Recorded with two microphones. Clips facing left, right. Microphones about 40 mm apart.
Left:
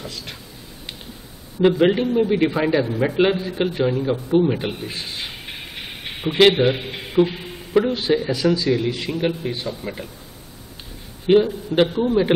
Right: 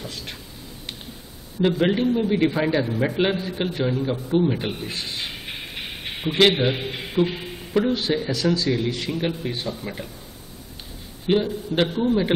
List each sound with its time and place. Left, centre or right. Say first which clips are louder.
1.6 s a man's voice: left 4 dB; centre
6.2 s speech: left 4 dB; centre
6.9 s a sound: left 4 dB; centre
8.3 s a man's voice: left 3 dB; centre
11.2 s a man's voice: left 6 dB; centre